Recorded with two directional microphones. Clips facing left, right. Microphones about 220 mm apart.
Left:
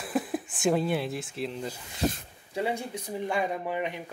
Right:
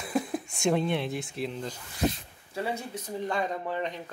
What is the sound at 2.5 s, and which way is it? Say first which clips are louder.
Speech: left 2 dB; 15° left (ahead or behind).